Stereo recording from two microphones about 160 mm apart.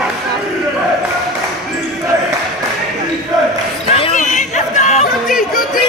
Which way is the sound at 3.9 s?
45° left (ahead or behind).